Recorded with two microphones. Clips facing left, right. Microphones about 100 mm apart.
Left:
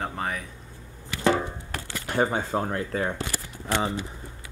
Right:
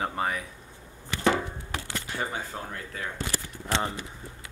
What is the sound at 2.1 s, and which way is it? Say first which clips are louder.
Speech: left 10 dB; 40° left (ahead or behind).